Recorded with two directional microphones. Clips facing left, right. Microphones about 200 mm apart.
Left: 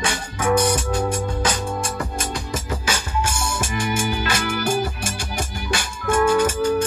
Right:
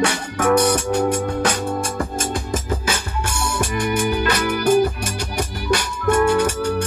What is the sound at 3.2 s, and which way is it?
Music, 60° right (ahead or behind).